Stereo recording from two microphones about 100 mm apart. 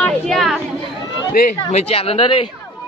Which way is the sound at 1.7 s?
80° left.